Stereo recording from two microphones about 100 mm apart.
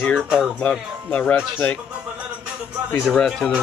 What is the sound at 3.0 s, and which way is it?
Speech, centre (ahead or behind).